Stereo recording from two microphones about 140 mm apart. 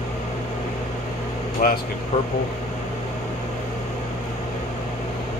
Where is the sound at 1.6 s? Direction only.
90° left.